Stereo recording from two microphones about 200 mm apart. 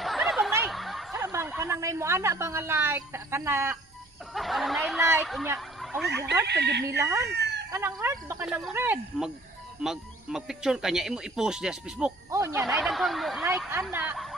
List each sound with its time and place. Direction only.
0.0 s snicker: centre (ahead or behind)
1.1 s a sound: 15° right (ahead or behind)
1.6 s a woman's voice: 15° right (ahead or behind)
4.3 s speech: centre (ahead or behind)
6.4 s speech: 60° right (ahead or behind)
7.0 s a woman's voice: 15° right (ahead or behind)
7.2 s chicken: 55° right (ahead or behind)
7.7 s a woman's voice: 10° right (ahead or behind)
12.3 s a woman's voice: 15° right (ahead or behind)
12.8 s a woman's voice: centre (ahead or behind)